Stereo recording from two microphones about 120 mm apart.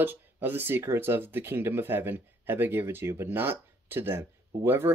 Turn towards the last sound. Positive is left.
turn(degrees=-20)  # may be behind; listen again after turning